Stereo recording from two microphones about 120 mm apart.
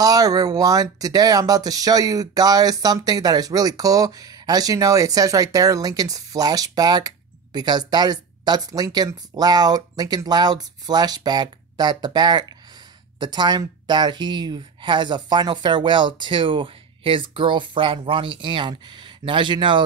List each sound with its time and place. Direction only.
0.0 s speech: 30° right (ahead or behind)